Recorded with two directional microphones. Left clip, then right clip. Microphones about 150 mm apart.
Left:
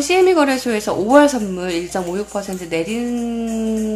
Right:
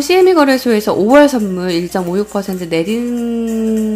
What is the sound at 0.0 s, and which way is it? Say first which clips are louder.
Speech: right 4 dB; 25° right (ahead or behind).